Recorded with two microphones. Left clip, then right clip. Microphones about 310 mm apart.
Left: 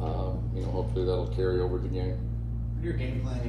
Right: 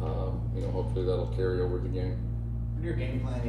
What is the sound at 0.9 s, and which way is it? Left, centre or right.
Speech, centre.